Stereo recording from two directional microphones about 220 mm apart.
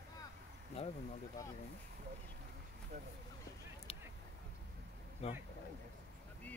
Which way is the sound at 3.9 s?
25° left (ahead or behind).